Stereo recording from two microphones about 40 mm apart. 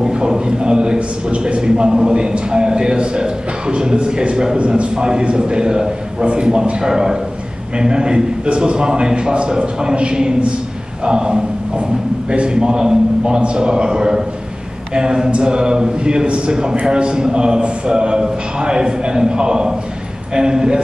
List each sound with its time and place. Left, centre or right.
0.0 s a man's voice: centre